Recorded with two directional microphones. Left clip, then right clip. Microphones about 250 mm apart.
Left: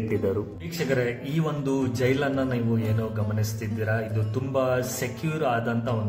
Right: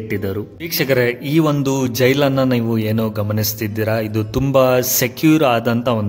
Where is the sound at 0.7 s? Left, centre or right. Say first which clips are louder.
Right 10 dB; right.